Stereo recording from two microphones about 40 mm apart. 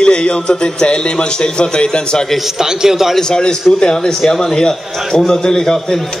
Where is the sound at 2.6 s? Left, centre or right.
Centre.